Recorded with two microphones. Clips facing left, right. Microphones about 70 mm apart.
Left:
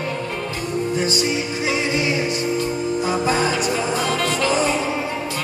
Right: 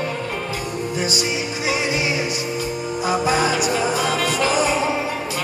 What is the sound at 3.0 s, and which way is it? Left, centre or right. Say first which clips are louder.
Music: right 3 dB; centre.